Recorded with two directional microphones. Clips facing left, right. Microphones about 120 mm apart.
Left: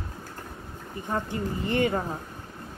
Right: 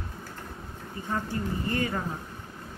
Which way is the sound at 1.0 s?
20° left (ahead or behind).